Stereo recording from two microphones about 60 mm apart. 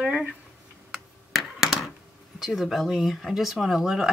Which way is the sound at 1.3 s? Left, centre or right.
Centre.